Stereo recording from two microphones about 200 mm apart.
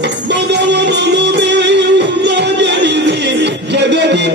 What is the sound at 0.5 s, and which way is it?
Music, 60° right (ahead or behind).